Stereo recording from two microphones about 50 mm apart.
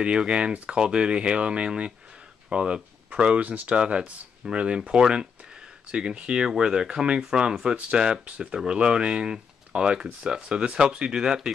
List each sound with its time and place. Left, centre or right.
0.0 s speech: centre
3.7 s speech: centre